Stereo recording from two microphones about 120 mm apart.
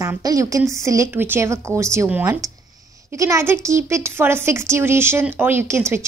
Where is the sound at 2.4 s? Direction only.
30° right (ahead or behind).